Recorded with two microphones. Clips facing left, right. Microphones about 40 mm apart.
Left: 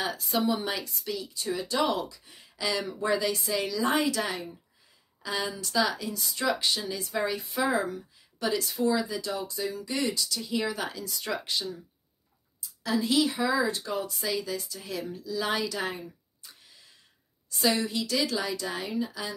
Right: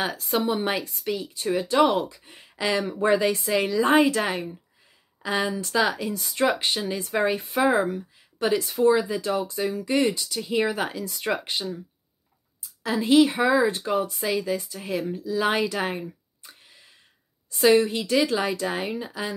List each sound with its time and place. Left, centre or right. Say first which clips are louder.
0.3 s speech: right 4 dB; right